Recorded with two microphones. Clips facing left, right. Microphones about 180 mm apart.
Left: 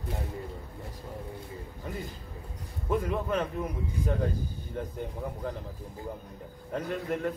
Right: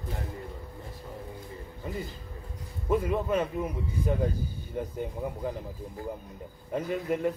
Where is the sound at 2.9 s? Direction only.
5° right (ahead or behind).